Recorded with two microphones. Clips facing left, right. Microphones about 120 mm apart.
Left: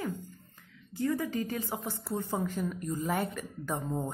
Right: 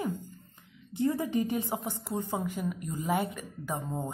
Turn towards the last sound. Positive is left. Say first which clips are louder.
# left 1 dB
turn(degrees=-10)  # may be behind; listen again after turning